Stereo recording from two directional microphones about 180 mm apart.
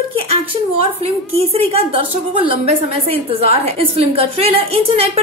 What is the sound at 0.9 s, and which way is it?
A woman's voice, 35° right (ahead or behind).